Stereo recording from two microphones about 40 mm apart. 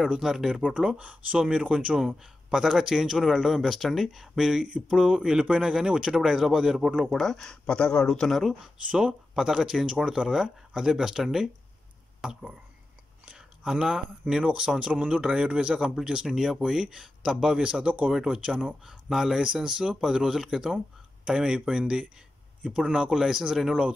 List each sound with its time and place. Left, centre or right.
0.1 s speech: centre
1.0 s a man's voice: right
2.0 s speech: centre
4.4 s a man's voice: centre
7.2 s speech: centre
7.6 s speech: left
8.0 s speech: centre
9.3 s speech: centre
13.7 s speech: centre
14.3 s a man's voice: right